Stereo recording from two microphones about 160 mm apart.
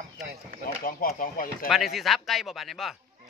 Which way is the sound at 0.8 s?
55° left (ahead or behind).